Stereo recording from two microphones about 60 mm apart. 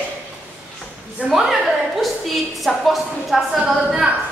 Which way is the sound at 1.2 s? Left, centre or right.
Right.